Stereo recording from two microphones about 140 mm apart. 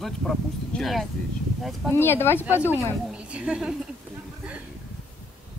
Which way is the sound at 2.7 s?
10° right (ahead or behind).